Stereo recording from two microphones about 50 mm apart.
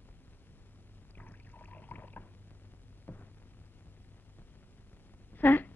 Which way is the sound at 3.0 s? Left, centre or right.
Left.